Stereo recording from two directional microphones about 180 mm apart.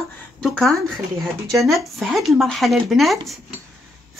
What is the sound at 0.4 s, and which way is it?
Speech, centre (ahead or behind).